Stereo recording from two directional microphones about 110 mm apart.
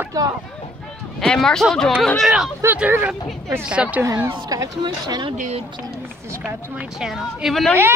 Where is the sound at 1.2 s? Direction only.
5° left (ahead or behind).